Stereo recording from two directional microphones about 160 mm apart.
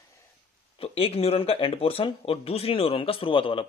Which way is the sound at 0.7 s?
35° left (ahead or behind).